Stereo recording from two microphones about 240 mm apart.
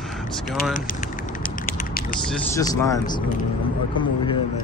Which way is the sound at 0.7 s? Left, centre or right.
Left.